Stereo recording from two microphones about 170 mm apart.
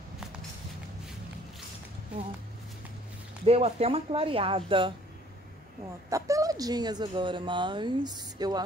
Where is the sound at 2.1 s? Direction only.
5° right (ahead or behind).